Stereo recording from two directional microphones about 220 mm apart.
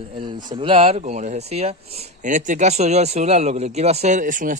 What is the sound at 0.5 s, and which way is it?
Speech, 25° right (ahead or behind).